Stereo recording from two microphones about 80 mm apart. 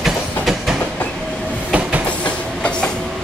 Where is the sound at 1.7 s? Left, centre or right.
Centre.